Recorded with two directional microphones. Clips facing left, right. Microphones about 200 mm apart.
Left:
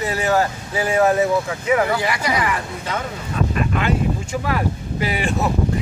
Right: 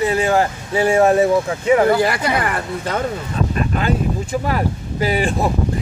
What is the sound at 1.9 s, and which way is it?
Speech, 50° right (ahead or behind).